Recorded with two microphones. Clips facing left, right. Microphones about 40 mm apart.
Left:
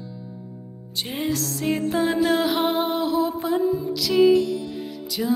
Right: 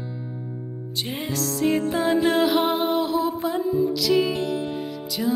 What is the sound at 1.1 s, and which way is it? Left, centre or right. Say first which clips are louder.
Music: left 3 dB; centre.